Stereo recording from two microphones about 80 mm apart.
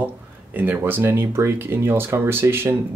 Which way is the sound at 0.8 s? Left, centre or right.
Right.